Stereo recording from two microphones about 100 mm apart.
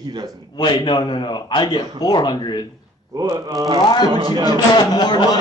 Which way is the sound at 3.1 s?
40° right (ahead or behind).